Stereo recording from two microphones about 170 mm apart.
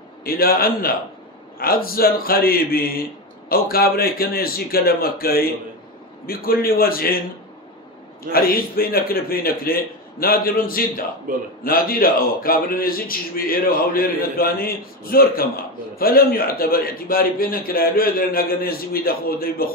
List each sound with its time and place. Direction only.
0.2 s a man's voice: 60° left (ahead or behind)
8.3 s a man's voice: 60° left (ahead or behind)
11.3 s a man's voice: 50° right (ahead or behind)
11.6 s a man's voice: 55° left (ahead or behind)